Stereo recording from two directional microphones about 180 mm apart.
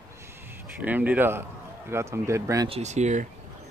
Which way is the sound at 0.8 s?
10° right (ahead or behind).